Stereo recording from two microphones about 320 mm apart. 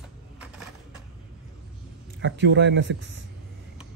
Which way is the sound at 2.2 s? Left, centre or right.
Right.